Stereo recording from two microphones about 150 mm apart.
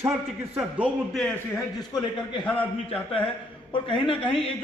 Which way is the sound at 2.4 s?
10° left (ahead or behind).